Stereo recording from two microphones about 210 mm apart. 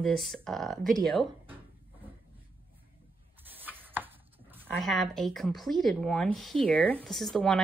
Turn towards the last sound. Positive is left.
turn(degrees=0)  # may be behind; listen again after turning